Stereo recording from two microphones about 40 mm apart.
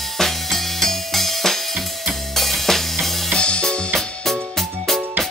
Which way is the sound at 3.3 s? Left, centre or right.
Left.